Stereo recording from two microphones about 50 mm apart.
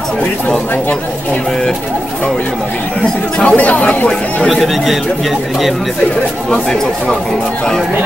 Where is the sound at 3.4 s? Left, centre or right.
Left.